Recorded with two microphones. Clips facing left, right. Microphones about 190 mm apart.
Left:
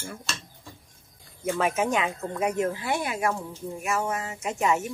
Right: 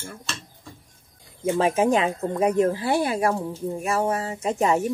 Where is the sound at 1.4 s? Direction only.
30° right (ahead or behind).